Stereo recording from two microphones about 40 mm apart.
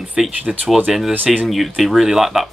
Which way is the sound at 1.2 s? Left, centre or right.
Right.